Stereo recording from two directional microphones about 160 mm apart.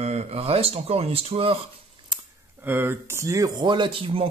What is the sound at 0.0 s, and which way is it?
Speech, 40° right (ahead or behind).